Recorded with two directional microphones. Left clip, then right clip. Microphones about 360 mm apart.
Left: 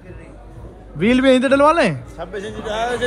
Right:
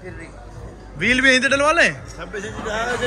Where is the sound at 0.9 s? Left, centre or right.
Centre.